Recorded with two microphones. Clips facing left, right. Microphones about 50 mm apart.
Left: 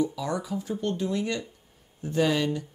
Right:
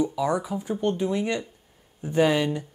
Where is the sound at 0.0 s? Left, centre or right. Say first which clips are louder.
Right 4 dB; centre.